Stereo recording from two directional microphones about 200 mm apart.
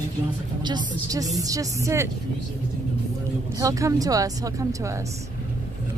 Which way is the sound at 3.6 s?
15° right (ahead or behind).